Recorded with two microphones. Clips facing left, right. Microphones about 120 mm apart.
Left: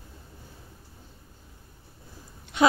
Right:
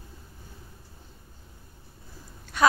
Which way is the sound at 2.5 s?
20° left (ahead or behind).